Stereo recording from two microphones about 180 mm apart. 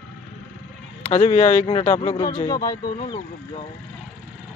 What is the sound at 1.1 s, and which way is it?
Speech, 35° left (ahead or behind).